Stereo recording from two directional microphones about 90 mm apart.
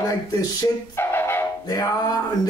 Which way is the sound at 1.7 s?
45° left (ahead or behind).